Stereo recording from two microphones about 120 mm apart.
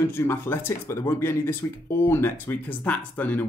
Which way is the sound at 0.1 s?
20° left (ahead or behind).